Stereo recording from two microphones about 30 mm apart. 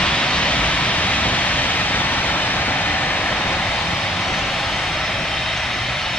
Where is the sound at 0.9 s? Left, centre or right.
Left.